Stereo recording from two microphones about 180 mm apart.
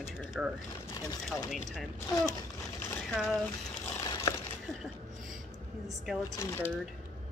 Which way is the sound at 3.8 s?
15° left (ahead or behind).